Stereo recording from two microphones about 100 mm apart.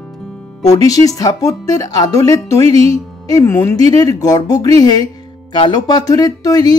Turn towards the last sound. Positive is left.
turn(degrees=40)  # may be behind; listen again after turning